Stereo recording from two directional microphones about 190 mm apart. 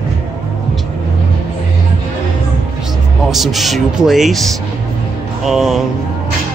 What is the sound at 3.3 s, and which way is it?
Speech, centre (ahead or behind).